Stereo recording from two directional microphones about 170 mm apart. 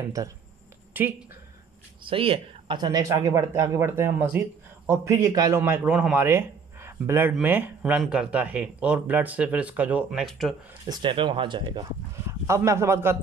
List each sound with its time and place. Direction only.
1.0 s speech: 10° right (ahead or behind)
2.0 s speech: 35° right (ahead or behind); by 10.5 s centre (ahead or behind)
10.9 s speech: 30° right (ahead or behind)